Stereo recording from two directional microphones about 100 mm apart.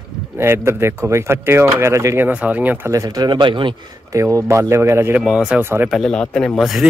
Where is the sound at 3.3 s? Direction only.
50° right (ahead or behind).